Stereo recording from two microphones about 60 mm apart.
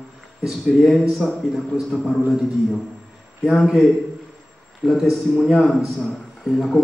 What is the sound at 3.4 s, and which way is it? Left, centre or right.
A man's voice, centre.